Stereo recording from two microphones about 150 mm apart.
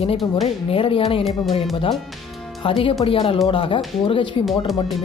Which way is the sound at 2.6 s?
35° left (ahead or behind).